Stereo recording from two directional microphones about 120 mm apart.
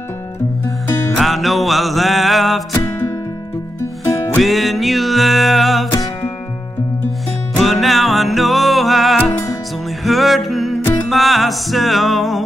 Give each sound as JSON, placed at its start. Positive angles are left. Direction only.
{"t": 1.1, "sound": "music", "side_deg": 0}
{"t": 2.7, "sound": "music", "side_deg": 25}
{"t": 4.4, "sound": "music", "side_deg": 0}
{"t": 7.5, "sound": "music", "side_deg": 0}